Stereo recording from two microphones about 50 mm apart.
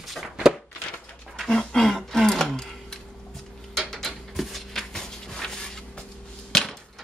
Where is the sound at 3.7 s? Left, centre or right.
Centre.